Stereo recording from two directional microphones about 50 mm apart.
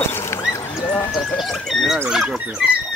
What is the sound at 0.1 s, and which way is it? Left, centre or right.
Horse, left.